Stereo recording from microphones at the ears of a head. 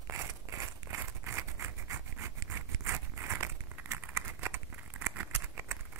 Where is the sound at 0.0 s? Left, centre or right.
Right.